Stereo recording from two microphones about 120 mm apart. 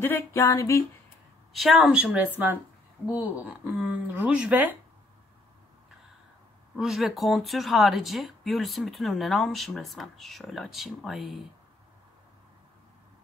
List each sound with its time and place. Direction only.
0.0 s a sound: 20° left (ahead or behind)
1.5 s speech: centre (ahead or behind)
6.8 s speech: centre (ahead or behind)